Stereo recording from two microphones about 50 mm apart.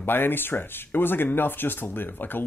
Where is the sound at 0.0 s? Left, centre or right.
Left.